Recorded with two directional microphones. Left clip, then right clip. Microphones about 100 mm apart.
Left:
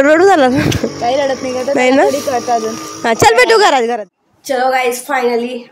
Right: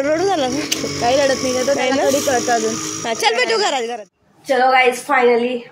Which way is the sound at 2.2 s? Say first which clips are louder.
Left 2 dB; 10° left (ahead or behind).